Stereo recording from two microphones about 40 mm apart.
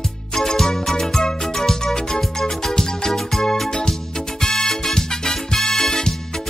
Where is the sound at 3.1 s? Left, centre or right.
Centre.